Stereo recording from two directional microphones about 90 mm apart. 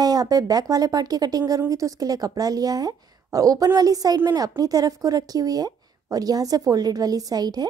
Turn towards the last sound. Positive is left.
turn(degrees=-45)  # may be behind; listen again after turning